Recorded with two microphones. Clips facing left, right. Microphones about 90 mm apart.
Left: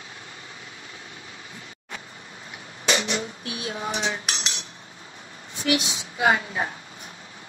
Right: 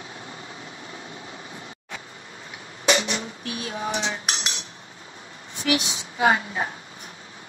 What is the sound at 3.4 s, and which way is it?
Cutlery, 40° right (ahead or behind).